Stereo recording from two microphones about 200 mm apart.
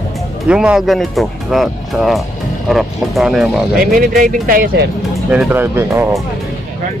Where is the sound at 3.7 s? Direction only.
45° right (ahead or behind).